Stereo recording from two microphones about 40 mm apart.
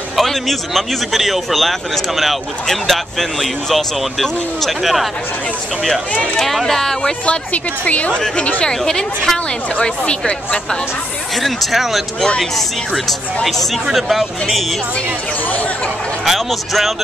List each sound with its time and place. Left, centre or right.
0.1 s speech: centre
6.4 s speech: centre
7.2 s a woman's voice: left
8.6 s speech: centre
9.8 s speech: left
11.3 s speech: centre
16.3 s a man's voice: centre